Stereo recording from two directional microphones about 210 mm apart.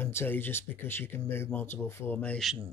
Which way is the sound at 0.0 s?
10° left (ahead or behind).